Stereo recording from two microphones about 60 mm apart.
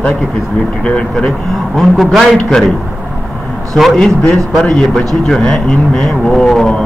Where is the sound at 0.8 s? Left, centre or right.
Centre.